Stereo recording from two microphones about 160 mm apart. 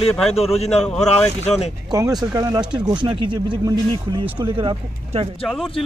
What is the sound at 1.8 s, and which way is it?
Speech, 25° right (ahead or behind).